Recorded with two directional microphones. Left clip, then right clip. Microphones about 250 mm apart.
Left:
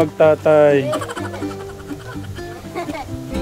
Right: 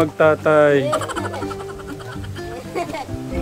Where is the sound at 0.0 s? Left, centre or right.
Centre.